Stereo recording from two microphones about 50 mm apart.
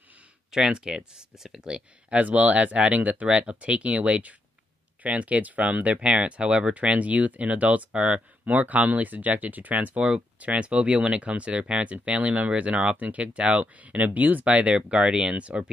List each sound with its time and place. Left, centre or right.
0.5 s speech: centre
2.1 s speech: right